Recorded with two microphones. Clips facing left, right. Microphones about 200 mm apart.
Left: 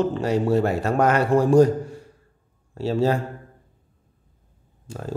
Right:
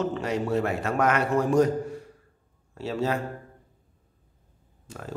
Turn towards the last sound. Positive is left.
turn(degrees=30)  # may be behind; listen again after turning